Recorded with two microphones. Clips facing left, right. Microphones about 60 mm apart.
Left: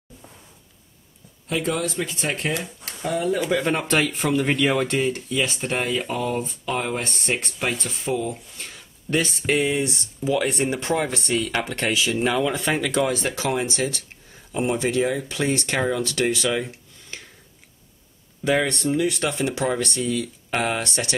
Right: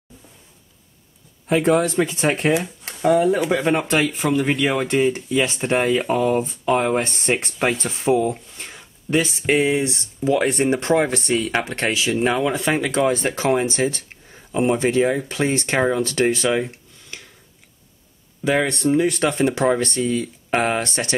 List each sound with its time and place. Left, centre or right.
1.5 s speech: right
3.5 s speech: centre
10.2 s speech: right
12.2 s speech: right
12.8 s speech: right
18.4 s speech: centre
18.9 s speech: right